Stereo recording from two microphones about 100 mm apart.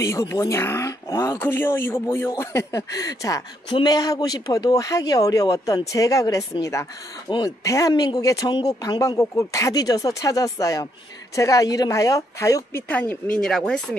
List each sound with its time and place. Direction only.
0.0 s speech: 30° left (ahead or behind)
7.2 s speech: 50° left (ahead or behind)
7.6 s speech: 35° left (ahead or behind)
9.2 s speech: 30° left (ahead or behind)
12.8 s speech: 15° left (ahead or behind)
13.4 s speech: 5° left (ahead or behind)